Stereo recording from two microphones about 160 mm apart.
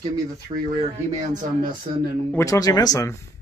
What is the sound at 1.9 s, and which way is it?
Speech, 40° right (ahead or behind).